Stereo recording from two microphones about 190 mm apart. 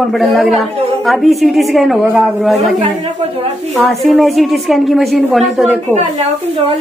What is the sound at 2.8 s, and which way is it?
Speech, 35° right (ahead or behind).